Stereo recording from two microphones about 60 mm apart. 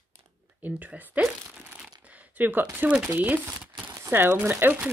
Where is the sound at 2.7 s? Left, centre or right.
Right.